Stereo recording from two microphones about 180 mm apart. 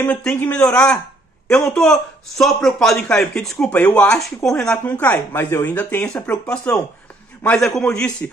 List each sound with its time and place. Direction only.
0.0 s a man's voice: 10° left (ahead or behind)